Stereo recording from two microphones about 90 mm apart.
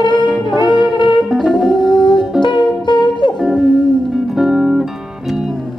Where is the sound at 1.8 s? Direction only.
60° left (ahead or behind).